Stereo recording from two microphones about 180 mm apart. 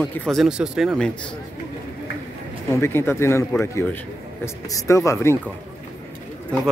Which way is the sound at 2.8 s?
15° left (ahead or behind).